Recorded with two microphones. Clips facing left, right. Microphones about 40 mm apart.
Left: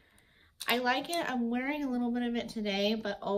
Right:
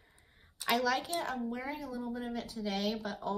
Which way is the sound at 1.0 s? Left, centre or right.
Left.